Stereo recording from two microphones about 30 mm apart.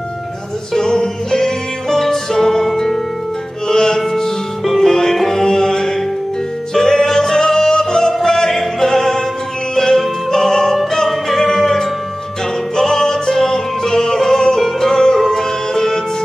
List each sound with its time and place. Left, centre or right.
0.7 s music: centre
3.6 s music: centre
8.5 s music: centre